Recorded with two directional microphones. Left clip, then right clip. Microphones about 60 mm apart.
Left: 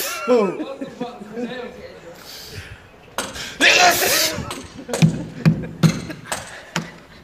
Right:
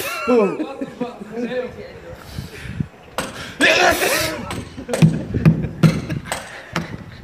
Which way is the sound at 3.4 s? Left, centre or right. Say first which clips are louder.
Left 1 dB; right.